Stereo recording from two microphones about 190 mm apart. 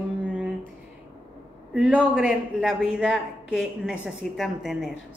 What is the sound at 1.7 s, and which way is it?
A woman's voice, 5° right (ahead or behind).